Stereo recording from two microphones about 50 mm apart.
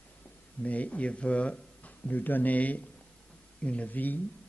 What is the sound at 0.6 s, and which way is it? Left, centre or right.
Speech, left.